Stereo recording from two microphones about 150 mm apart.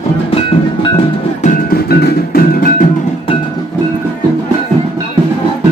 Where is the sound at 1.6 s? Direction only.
85° left.